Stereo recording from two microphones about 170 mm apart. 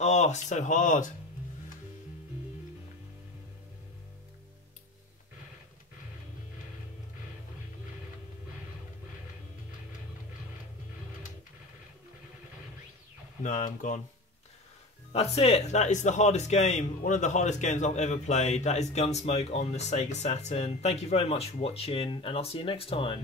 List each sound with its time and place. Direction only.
0.0 s speech: 40° left (ahead or behind)
13.4 s speech: 45° left (ahead or behind)
15.1 s a man's voice: 35° left (ahead or behind)